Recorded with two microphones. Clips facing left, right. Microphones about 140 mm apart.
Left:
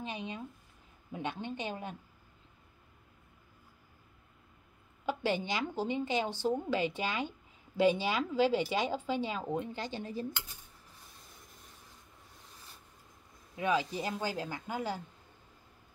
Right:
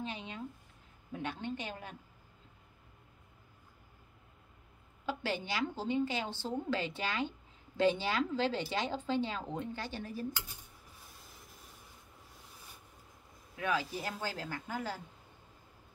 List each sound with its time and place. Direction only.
0.0 s a woman's voice: 15° left (ahead or behind)
5.0 s a woman's voice: 15° left (ahead or behind)
13.6 s a woman's voice: 20° left (ahead or behind)